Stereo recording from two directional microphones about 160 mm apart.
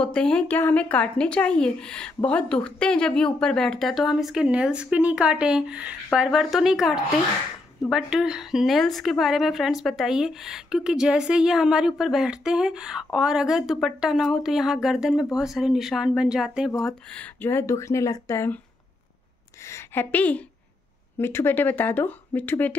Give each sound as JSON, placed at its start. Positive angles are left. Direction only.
{"t": 0.0, "sound": "a woman's voice", "side_deg": 5}
{"t": 16.8, "sound": "a woman's voice", "side_deg": 10}
{"t": 19.6, "sound": "a woman's voice", "side_deg": 15}